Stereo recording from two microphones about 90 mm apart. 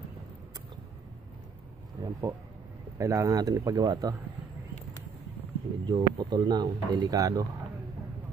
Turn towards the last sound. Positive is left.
turn(degrees=-40)  # may be behind; listen again after turning